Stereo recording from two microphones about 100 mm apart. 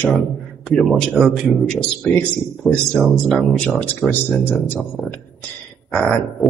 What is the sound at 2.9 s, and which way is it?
Speech, 10° right (ahead or behind).